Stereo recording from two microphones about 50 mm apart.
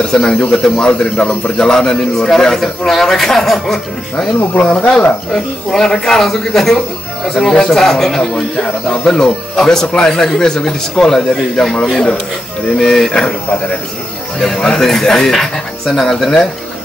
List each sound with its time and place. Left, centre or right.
0.1 s speech: centre
4.6 s speech: centre